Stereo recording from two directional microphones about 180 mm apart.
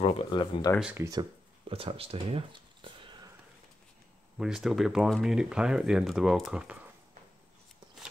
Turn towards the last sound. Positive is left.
turn(degrees=0)  # may be behind; listen again after turning